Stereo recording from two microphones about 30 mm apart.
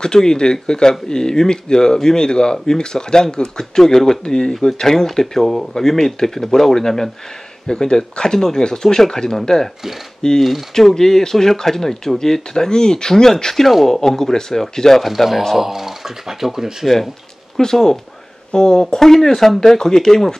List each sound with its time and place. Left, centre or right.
0.0 s speech: left
10.8 s speech: centre
15.0 s speech: centre
17.6 s speech: centre